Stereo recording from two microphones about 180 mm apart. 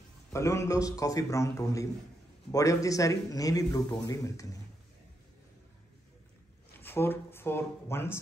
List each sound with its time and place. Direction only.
0.3 s a man's voice: 15° left (ahead or behind)
6.7 s speech: 10° left (ahead or behind)